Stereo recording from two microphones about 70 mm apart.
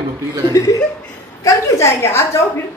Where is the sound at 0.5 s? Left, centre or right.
Left.